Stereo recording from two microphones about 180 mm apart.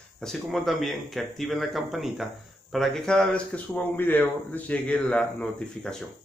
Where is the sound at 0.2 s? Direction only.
Centre (ahead or behind).